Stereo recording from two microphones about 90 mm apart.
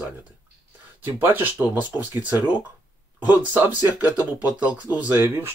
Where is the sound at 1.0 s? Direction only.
20° right (ahead or behind).